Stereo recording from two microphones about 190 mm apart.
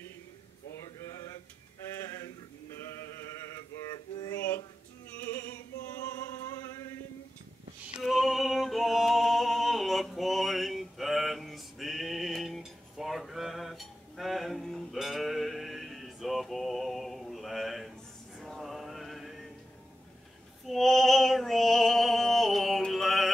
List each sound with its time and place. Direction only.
2.1 s male singing: 15° left (ahead or behind)
4.2 s a sound: 15° left (ahead or behind)
6.4 s chant: 15° left (ahead or behind)
7.8 s yodeling: centre (ahead or behind)
18.4 s music: centre (ahead or behind)
20.6 s female singing: centre (ahead or behind)